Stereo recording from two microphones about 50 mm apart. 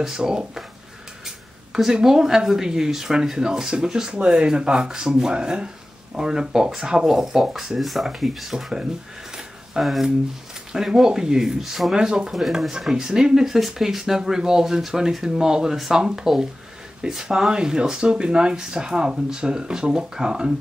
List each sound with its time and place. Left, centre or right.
0.0 s speech: centre
9.3 s a sound: centre
10.7 s speech: centre